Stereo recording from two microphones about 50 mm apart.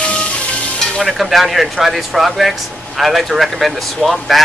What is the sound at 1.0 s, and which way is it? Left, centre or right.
Speech, centre.